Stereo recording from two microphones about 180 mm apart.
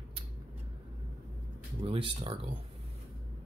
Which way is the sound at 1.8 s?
30° right (ahead or behind).